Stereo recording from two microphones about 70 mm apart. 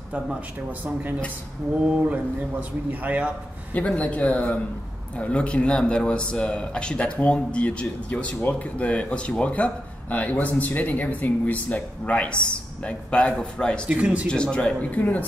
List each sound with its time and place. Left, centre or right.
0.1 s speech: centre
3.7 s speech: centre
13.8 s speech: centre
14.3 s speech: centre